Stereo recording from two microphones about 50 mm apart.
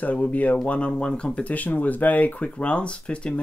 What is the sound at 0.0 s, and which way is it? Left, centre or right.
Speech, left.